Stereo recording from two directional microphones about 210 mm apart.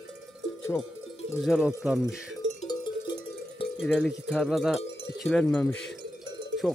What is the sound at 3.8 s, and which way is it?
Speech, centre (ahead or behind).